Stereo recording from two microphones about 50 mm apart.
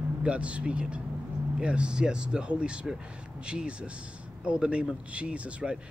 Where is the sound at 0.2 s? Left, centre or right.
Right.